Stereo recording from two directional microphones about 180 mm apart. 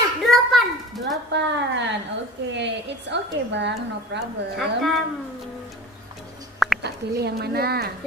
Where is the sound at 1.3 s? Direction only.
75° right (ahead or behind).